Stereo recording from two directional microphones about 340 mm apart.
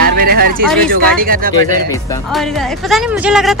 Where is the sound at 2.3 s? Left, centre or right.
Centre.